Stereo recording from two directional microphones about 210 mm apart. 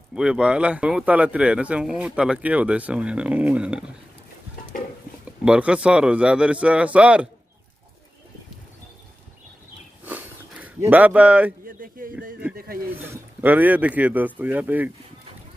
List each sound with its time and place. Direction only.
0.1 s speech: 5° right (ahead or behind)
5.4 s speech: 5° right (ahead or behind)
10.0 s a sound: 10° right (ahead or behind)
11.6 s speech: 40° right (ahead or behind)
13.1 s speech: 10° right (ahead or behind)